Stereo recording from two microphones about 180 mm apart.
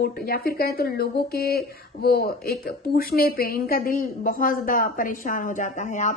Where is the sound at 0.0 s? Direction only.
55° left (ahead or behind).